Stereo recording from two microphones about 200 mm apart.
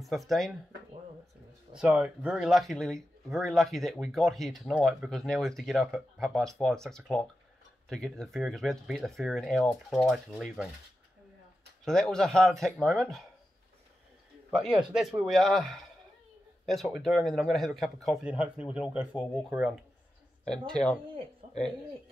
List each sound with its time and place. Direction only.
0.0 s speech: centre (ahead or behind)
1.7 s speech: 5° right (ahead or behind)
11.8 s speech: 5° left (ahead or behind)
14.6 s speech: 25° right (ahead or behind)
15.0 s speech: centre (ahead or behind)